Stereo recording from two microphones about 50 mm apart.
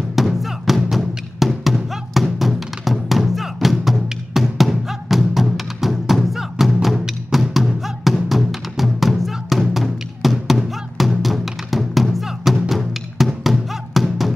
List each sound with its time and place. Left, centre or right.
0.1 s music: centre